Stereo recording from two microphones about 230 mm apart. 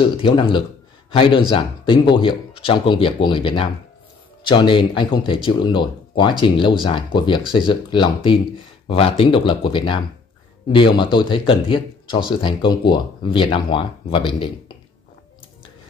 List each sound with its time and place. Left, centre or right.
0.0 s speech: left